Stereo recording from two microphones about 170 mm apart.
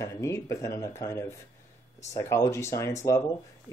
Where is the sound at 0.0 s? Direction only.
20° left (ahead or behind).